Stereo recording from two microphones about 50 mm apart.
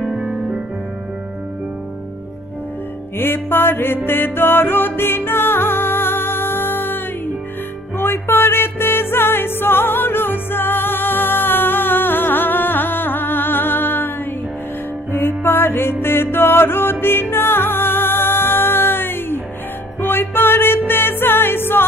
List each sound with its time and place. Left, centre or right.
0.0 s music: centre
3.2 s music: left
8.0 s music: left
15.1 s music: left